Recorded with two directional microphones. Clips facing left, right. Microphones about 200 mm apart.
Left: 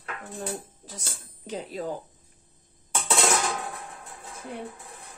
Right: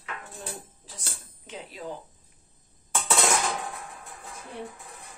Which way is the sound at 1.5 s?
40° left (ahead or behind).